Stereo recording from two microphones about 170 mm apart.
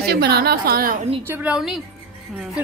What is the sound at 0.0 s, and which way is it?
Speech, 70° right (ahead or behind).